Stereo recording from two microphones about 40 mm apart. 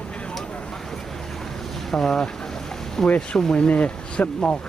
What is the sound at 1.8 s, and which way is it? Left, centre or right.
Speech, centre.